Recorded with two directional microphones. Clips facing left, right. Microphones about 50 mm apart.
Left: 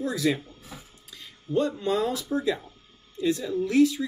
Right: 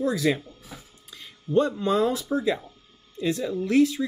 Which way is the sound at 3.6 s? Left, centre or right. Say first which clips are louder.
Even; right.